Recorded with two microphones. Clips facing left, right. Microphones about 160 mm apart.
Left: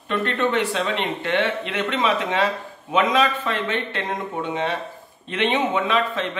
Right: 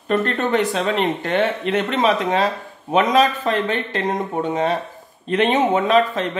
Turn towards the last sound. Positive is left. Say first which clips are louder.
# right 5 dB
turn(degrees=-40)  # may be behind; listen again after turning